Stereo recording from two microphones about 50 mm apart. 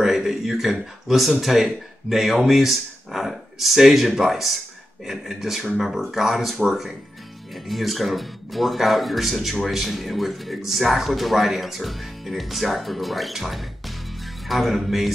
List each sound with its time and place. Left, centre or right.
0.0 s speech: centre